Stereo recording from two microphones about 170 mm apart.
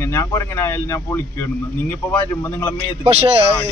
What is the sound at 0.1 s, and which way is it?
Speech, 15° left (ahead or behind).